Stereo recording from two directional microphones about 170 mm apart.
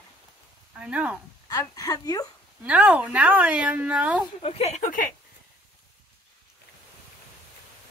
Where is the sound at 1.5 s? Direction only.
20° left (ahead or behind).